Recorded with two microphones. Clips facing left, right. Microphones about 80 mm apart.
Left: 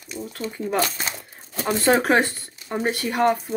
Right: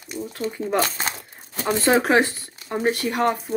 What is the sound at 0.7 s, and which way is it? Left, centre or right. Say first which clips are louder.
Speech: right 1 dB; right.